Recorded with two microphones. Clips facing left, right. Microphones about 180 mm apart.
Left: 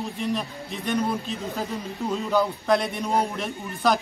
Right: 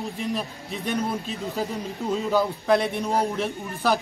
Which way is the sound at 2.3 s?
Centre (ahead or behind).